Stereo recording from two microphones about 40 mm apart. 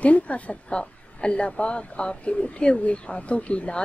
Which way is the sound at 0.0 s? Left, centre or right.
Left.